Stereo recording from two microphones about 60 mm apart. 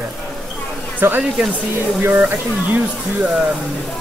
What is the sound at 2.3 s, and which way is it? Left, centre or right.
Speech, right.